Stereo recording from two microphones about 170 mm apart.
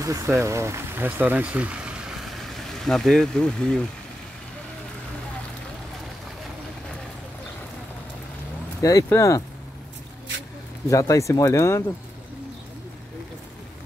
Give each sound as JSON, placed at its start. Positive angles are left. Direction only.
{"t": 0.0, "sound": "speech", "side_deg": -20}
{"t": 8.8, "sound": "speech", "side_deg": 20}
{"t": 10.9, "sound": "speech", "side_deg": 20}